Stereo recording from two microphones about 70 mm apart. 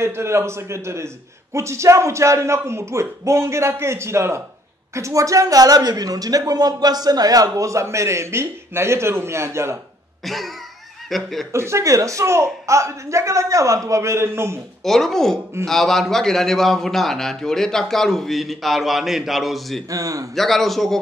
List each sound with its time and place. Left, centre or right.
0.0 s a man's voice: right
7.4 s a man's voice: right
10.2 s a man's voice: centre
11.5 s speech: right
14.8 s a man's voice: centre
19.9 s speech: right
20.3 s a man's voice: centre